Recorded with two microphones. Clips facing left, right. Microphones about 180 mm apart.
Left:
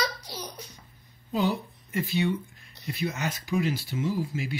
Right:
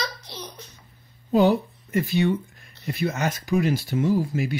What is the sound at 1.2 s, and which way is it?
Speech, 70° right (ahead or behind).